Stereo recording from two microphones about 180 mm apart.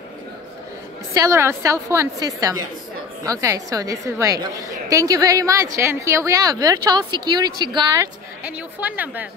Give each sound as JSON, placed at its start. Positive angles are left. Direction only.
{"t": 1.1, "sound": "a woman's voice", "side_deg": -15}
{"t": 8.5, "sound": "a woman's voice", "side_deg": -10}